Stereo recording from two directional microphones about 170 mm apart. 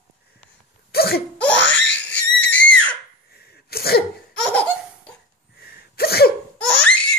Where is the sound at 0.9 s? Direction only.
65° left (ahead or behind).